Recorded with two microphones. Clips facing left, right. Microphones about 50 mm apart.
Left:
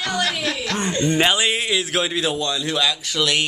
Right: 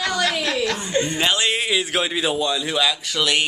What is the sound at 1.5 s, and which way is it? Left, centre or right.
A man's voice, centre.